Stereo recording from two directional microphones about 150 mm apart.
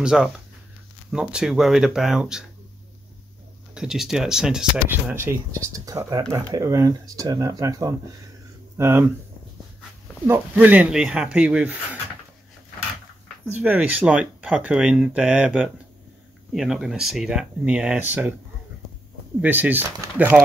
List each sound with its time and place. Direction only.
0.0 s speech: 5° right (ahead or behind)
3.7 s speech: 5° right (ahead or behind)
10.2 s speech: 10° right (ahead or behind)
13.6 s speech: 10° right (ahead or behind)
19.4 s speech: 10° right (ahead or behind)